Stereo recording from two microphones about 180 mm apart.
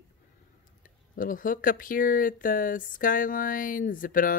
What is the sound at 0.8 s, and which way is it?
Speech, 50° left (ahead or behind).